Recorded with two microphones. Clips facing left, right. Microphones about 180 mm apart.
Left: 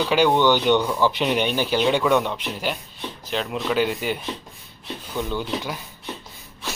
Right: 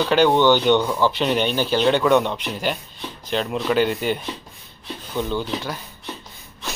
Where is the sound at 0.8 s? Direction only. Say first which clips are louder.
Right 1 dB; 15° right (ahead or behind).